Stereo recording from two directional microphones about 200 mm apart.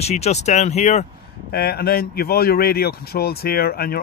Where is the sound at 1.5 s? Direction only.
50° left (ahead or behind).